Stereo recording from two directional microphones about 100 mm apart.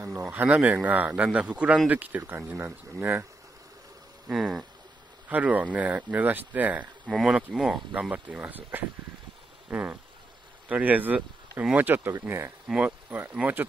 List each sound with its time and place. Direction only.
0.1 s speech: 20° right (ahead or behind)
4.3 s speech: 5° right (ahead or behind); by 12.5 s 25° right (ahead or behind)
12.6 s speech: 15° right (ahead or behind)